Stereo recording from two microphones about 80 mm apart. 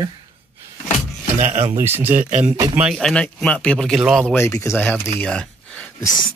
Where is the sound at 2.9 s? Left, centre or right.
Centre.